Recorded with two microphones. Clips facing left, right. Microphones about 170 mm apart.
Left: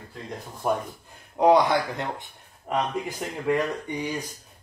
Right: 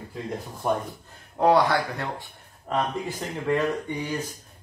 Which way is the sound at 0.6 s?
5° left (ahead or behind).